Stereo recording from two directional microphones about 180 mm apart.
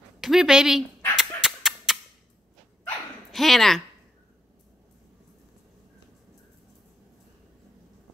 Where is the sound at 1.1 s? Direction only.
Centre (ahead or behind).